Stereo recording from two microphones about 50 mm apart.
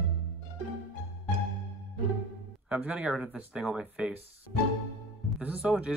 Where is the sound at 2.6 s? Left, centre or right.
Centre.